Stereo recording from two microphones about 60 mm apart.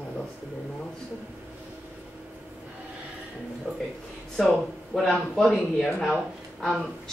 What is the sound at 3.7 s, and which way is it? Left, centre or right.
Speech, centre.